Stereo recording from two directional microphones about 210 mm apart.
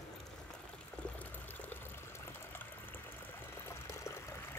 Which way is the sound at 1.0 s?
10° left (ahead or behind).